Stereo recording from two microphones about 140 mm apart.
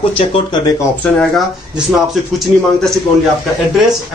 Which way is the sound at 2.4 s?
Centre (ahead or behind).